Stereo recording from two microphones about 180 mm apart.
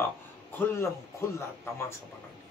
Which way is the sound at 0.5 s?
10° left (ahead or behind).